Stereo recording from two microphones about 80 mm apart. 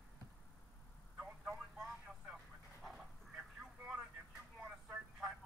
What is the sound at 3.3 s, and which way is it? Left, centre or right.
Vehicle, centre.